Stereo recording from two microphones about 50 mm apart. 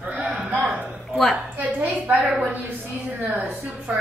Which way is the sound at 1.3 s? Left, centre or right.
Right.